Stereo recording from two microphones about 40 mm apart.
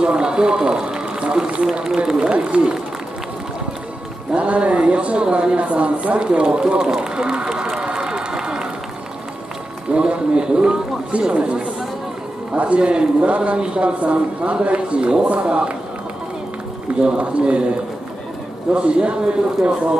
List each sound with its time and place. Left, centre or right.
0.0 s a man's voice: right
2.0 s a man's voice: centre
2.5 s speech: right
4.3 s a man's voice: right
7.7 s run: centre
9.8 s a man's voice: right
12.5 s a man's voice: right
17.0 s a man's voice: right
18.7 s a man's voice: right